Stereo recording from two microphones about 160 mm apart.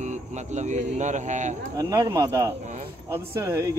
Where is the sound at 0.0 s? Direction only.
50° right (ahead or behind).